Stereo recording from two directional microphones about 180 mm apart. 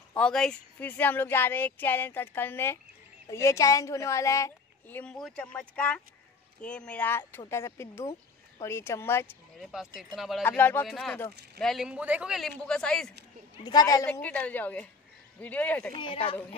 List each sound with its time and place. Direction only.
0.1 s speech: 5° left (ahead or behind)
9.6 s a man's voice: centre (ahead or behind)
10.4 s a man's voice: 10° left (ahead or behind)
13.7 s a woman's voice: 20° left (ahead or behind)
14.0 s speech: 10° left (ahead or behind)
16.0 s a woman's voice: 30° left (ahead or behind)